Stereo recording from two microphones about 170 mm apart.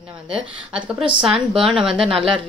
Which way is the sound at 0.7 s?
5° right (ahead or behind).